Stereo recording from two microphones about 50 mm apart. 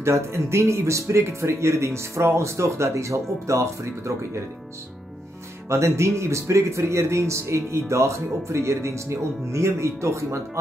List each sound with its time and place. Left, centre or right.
0.0 s speech: right
5.7 s speech: right